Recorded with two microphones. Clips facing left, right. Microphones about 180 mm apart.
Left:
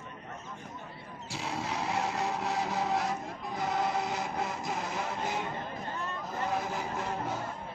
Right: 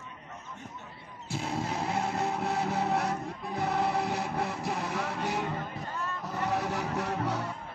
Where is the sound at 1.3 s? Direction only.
50° right (ahead or behind); by 7.5 s 75° right (ahead or behind).